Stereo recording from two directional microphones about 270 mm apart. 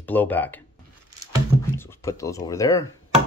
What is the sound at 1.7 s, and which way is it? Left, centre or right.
Speech, centre.